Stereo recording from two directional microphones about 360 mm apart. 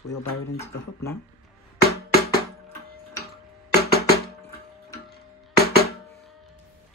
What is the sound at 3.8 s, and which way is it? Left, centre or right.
Music, left.